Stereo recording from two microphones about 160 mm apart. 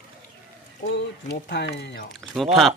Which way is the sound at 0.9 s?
90° left.